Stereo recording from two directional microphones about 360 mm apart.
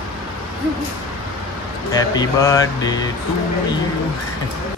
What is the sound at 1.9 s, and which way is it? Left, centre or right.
Speech, centre.